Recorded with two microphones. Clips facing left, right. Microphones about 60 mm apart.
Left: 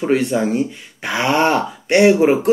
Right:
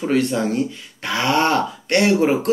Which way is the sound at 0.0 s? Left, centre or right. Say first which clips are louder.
Left 2 dB; centre.